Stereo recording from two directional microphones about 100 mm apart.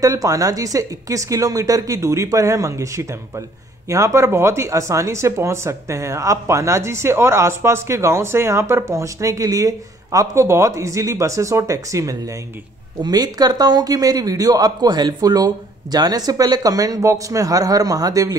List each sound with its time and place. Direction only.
0.0 s speech: 35° right (ahead or behind)